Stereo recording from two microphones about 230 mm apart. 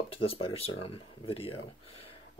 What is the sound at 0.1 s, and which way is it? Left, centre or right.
Speech, left.